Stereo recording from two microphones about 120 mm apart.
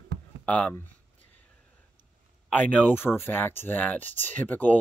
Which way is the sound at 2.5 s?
10° left (ahead or behind).